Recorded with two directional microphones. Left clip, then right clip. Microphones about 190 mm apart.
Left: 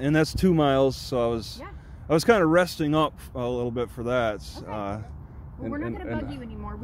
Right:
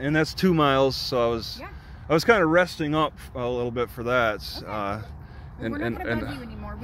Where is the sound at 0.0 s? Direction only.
20° left (ahead or behind).